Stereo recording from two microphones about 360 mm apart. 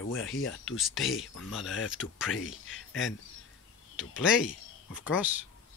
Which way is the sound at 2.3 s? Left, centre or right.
Left.